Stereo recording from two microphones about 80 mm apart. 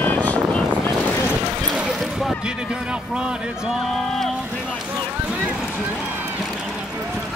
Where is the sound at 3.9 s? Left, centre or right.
Centre.